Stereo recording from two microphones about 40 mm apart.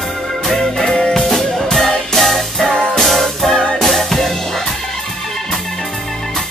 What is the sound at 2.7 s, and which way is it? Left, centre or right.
Music, left.